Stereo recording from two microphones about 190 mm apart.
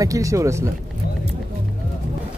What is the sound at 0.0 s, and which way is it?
Speech, 15° right (ahead or behind).